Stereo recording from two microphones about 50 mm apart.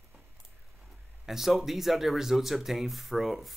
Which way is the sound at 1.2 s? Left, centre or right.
Centre.